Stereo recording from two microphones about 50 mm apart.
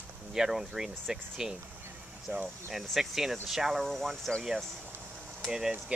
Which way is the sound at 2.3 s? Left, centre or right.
Right.